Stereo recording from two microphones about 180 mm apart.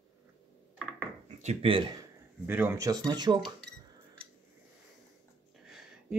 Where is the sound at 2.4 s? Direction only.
10° right (ahead or behind).